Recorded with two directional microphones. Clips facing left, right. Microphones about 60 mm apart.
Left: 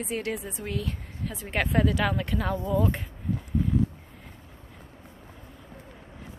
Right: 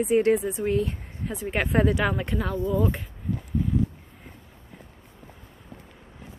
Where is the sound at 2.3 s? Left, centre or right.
Centre.